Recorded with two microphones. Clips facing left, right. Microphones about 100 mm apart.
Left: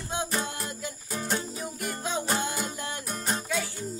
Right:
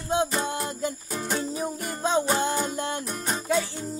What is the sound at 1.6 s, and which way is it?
Music, 35° right (ahead or behind).